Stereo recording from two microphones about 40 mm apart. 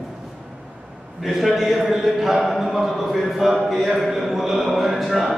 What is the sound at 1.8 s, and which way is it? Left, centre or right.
A man's voice, centre.